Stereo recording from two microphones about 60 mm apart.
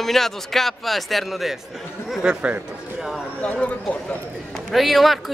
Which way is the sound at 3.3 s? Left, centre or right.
Centre.